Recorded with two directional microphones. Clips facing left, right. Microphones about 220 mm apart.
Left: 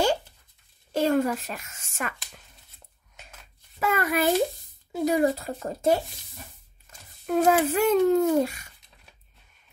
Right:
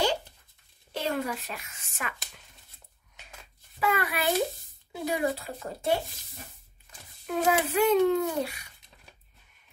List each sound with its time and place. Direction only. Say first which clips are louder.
0.9 s a sound: left 8 dB; 45° left (ahead or behind)
3.8 s a child's voice: left 4 dB; 45° left (ahead or behind)
7.2 s a child's voice: left 5 dB; 45° left (ahead or behind)